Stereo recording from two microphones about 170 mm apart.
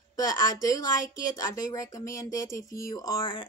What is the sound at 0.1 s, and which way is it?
Speech, 20° left (ahead or behind).